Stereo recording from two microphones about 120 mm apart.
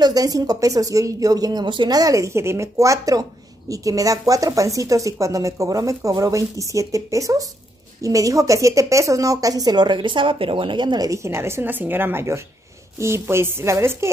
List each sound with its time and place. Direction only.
0.0 s speech: 30° right (ahead or behind)